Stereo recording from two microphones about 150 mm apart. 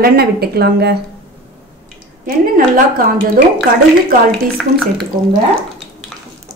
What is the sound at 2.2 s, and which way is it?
Speech, 75° right (ahead or behind).